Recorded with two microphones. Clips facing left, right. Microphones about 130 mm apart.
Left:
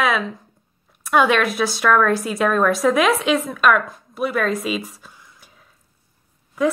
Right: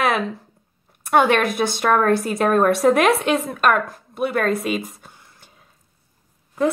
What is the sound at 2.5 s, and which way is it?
Speech, 55° right (ahead or behind).